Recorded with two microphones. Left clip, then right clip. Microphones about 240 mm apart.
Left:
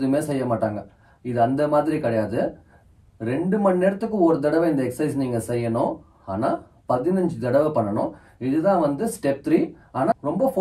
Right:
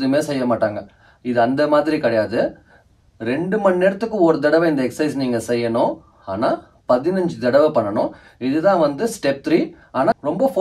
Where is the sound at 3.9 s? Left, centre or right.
Right.